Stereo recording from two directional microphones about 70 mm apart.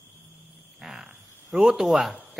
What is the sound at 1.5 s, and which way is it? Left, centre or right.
Speech, centre.